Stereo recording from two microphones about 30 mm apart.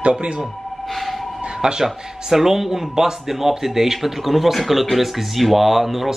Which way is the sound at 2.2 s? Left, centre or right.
Centre.